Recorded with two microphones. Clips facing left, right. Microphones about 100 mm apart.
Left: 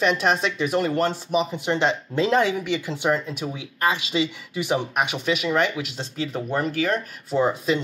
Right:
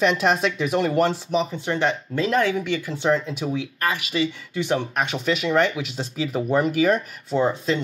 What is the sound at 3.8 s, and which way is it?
Speech, 20° left (ahead or behind).